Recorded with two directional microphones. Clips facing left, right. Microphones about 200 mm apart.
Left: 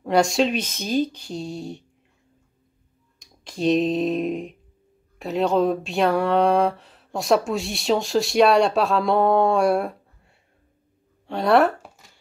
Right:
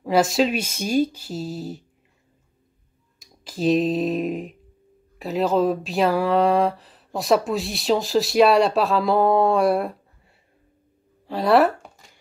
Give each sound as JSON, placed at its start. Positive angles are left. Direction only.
{"t": 0.0, "sound": "speech", "side_deg": 0}
{"t": 3.2, "sound": "speech", "side_deg": 0}